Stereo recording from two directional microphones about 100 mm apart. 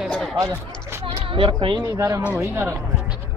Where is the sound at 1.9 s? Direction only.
30° right (ahead or behind).